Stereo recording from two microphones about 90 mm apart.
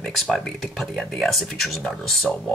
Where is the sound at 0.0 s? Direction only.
5° left (ahead or behind).